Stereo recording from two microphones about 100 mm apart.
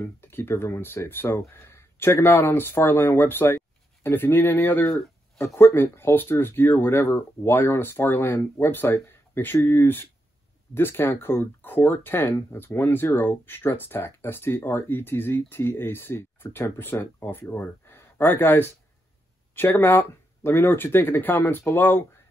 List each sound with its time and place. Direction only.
0.0 s speech: 25° left (ahead or behind)